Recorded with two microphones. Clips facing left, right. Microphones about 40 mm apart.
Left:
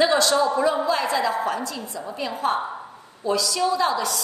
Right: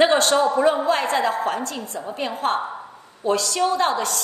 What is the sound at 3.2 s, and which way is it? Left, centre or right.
A woman's voice, right.